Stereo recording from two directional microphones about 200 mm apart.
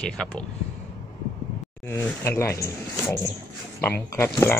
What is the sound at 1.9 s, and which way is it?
Speech, 10° left (ahead or behind).